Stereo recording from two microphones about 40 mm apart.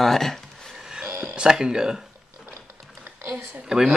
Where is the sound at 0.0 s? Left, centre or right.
Centre.